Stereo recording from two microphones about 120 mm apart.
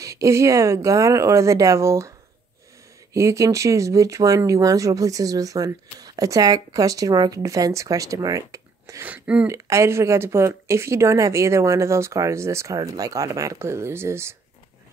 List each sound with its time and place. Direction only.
0.0 s speech: 25° right (ahead or behind)
9.0 s speech: 10° right (ahead or behind)
9.5 s speech: 25° right (ahead or behind)